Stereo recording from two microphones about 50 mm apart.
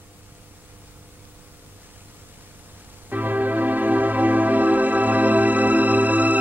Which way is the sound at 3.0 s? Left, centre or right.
Right.